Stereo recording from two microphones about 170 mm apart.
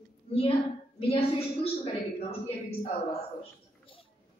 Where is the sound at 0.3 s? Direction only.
30° left (ahead or behind).